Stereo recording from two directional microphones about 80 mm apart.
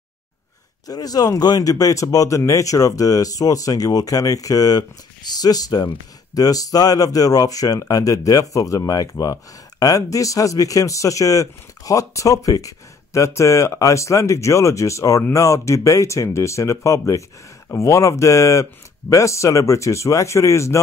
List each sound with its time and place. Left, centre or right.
0.8 s speech: left